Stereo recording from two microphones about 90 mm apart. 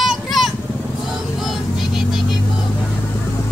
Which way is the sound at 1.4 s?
5° right (ahead or behind).